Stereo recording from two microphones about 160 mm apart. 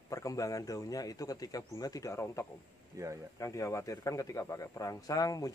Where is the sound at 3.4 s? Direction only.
20° left (ahead or behind).